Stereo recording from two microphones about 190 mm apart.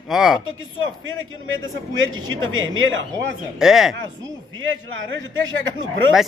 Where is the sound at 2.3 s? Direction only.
90° right.